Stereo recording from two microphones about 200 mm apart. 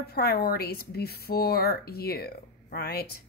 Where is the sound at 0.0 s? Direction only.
50° left (ahead or behind).